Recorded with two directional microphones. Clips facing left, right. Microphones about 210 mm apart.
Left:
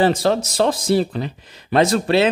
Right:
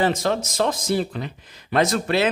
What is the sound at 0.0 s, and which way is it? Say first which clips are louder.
Speech: left 4 dB; 35° left (ahead or behind).